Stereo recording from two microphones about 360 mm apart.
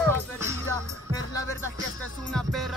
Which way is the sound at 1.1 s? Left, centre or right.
Centre.